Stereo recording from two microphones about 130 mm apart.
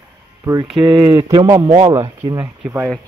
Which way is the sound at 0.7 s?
35° right (ahead or behind).